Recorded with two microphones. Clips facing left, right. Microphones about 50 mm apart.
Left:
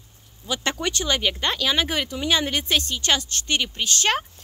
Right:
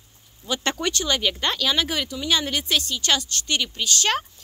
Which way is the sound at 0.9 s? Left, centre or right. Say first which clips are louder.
Even; centre.